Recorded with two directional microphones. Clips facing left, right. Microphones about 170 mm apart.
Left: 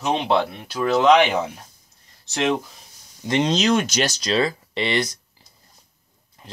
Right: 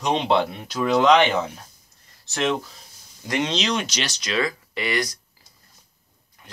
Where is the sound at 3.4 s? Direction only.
45° left (ahead or behind).